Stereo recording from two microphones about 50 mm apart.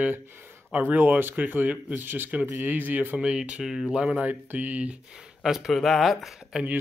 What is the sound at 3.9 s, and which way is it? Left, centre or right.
Speech, centre.